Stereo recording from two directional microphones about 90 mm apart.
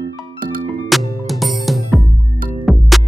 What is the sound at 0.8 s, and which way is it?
Music, centre (ahead or behind).